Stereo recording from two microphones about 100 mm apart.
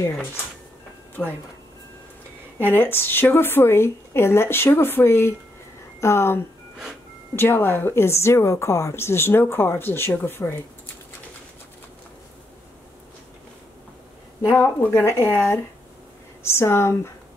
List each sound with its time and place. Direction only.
1.2 s a woman's voice: 20° left (ahead or behind)
2.6 s a woman's voice: 20° left (ahead or behind)
14.6 s a woman's voice: 25° left (ahead or behind)